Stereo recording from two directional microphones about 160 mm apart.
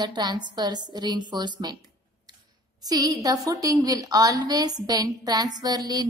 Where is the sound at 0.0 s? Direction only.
25° right (ahead or behind).